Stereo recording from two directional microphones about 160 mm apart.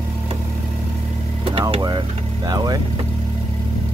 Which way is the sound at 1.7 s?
30° right (ahead or behind).